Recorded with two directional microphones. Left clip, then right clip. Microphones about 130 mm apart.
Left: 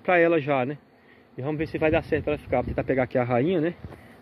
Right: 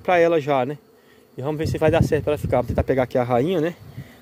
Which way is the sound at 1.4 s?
60° right (ahead or behind).